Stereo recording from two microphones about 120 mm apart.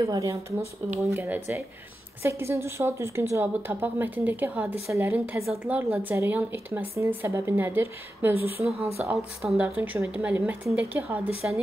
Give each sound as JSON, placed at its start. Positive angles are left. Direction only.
{"t": 0.0, "sound": "speech", "side_deg": -25}
{"t": 0.8, "sound": "speech", "side_deg": -15}
{"t": 9.1, "sound": "speech", "side_deg": -5}